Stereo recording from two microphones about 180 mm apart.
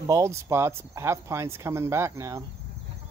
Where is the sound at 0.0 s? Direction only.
15° right (ahead or behind).